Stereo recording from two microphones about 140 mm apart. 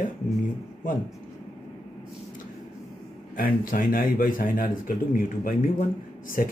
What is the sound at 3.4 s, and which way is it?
Speech, 75° left (ahead or behind).